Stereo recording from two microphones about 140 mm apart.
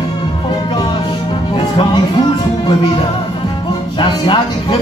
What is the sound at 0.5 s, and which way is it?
Music, 35° left (ahead or behind).